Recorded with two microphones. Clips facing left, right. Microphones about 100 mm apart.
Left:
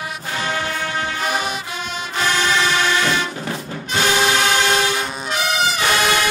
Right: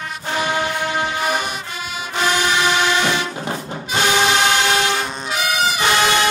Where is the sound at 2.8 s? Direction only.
20° right (ahead or behind).